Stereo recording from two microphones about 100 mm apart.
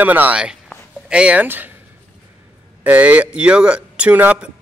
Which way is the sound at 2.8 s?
15° right (ahead or behind).